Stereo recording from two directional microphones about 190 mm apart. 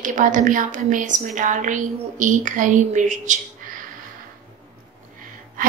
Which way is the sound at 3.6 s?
45° right (ahead or behind).